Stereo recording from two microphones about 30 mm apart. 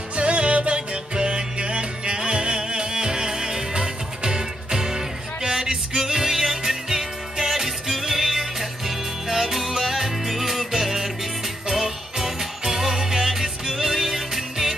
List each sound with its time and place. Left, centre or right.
0.1 s music: right; by 14.8 s centre